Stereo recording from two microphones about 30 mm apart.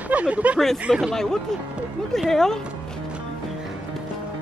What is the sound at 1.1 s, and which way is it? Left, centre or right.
Speech, centre.